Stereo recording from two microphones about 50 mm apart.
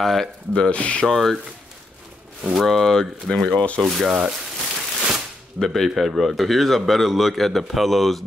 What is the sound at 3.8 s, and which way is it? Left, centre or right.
Speech, centre.